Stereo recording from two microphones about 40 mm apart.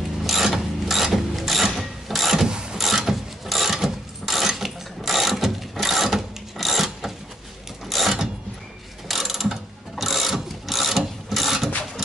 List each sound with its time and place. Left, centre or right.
0.2 s ratchet: centre
2.4 s mechanisms: centre
2.8 s mechanisms: centre
6.6 s filing: centre
7.9 s mechanisms: centre